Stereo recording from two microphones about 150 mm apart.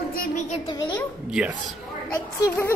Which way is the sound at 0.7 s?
30° left (ahead or behind).